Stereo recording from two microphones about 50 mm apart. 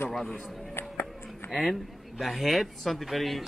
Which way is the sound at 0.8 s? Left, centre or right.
Left.